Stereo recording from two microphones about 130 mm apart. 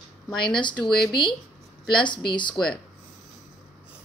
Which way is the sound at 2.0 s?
35° left (ahead or behind).